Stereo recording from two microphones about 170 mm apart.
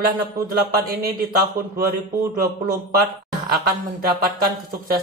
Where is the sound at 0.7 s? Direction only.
60° right (ahead or behind).